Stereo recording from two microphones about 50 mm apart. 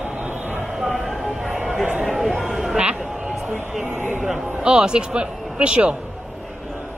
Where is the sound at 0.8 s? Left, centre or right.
Centre.